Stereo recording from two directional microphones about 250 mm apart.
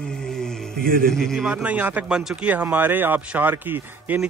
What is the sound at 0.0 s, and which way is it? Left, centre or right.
Music, centre.